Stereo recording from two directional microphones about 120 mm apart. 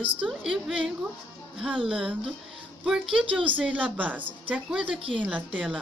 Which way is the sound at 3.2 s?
45° right (ahead or behind).